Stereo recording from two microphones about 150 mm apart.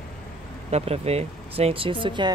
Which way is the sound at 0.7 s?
45° right (ahead or behind).